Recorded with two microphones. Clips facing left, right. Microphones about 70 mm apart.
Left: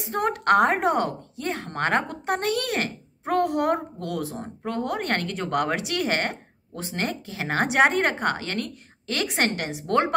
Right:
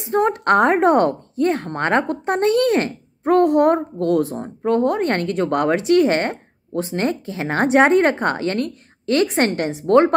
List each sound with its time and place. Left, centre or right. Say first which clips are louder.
0.0 s speech: right 6 dB; right